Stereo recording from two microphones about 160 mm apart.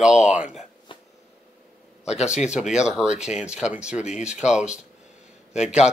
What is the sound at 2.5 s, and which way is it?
Speech, 5° right (ahead or behind).